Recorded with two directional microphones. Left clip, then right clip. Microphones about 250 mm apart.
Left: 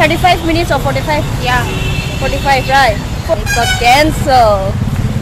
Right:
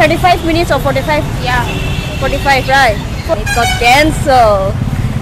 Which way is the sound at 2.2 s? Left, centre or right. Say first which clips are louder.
Right 1 dB; centre.